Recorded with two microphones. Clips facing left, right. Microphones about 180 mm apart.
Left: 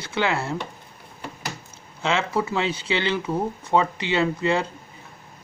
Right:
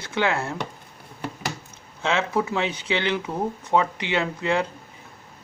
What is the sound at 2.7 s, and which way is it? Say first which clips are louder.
Speech: even; 15° right (ahead or behind).